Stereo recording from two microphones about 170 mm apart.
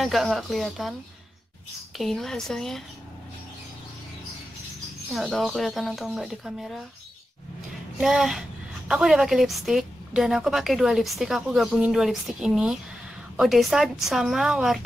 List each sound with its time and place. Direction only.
0.0 s a woman's voice: centre (ahead or behind)
2.0 s a woman's voice: centre (ahead or behind)
5.1 s a woman's voice: centre (ahead or behind)
8.0 s a woman's voice: 5° right (ahead or behind)